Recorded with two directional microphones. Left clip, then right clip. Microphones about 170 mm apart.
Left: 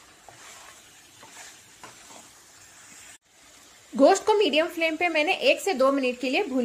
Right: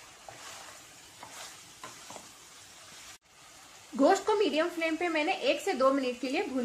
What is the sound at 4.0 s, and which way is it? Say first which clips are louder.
A woman's voice: left 6 dB; 45° left (ahead or behind).